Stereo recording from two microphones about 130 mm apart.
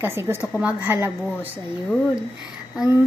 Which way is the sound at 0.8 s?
15° right (ahead or behind).